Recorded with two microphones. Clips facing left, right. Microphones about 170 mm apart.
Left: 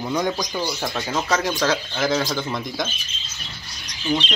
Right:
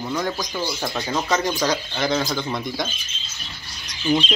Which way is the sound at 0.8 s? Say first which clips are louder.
Even; 5° left (ahead or behind).